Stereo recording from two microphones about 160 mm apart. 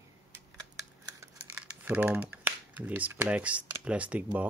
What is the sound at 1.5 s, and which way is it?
Speech, 10° right (ahead or behind).